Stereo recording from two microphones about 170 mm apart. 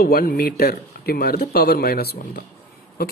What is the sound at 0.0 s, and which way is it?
A woman's voice, 60° left (ahead or behind).